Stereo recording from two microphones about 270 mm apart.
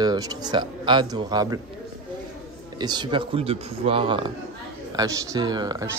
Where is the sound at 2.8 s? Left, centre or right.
Centre.